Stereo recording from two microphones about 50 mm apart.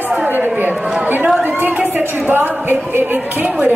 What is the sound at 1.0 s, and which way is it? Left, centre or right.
A woman's voice, right.